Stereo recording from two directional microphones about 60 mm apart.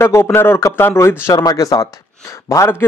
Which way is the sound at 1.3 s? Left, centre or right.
Left.